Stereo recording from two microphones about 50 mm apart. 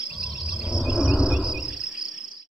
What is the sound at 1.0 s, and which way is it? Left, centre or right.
Insect, centre.